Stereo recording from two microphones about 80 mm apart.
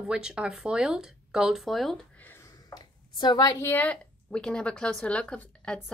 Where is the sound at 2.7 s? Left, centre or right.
Left.